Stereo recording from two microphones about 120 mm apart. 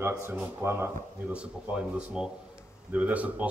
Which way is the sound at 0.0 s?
20° right (ahead or behind).